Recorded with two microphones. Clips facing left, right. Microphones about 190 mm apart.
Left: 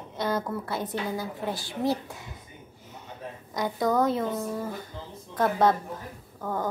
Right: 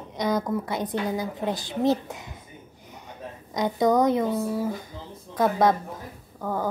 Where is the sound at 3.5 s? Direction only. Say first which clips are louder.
Right 4 dB; 20° right (ahead or behind).